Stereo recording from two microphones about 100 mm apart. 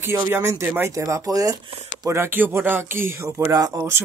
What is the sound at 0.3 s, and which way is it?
Speech, 25° right (ahead or behind).